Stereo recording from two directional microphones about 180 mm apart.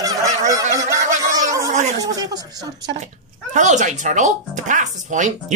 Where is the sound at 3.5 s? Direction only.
40° right (ahead or behind).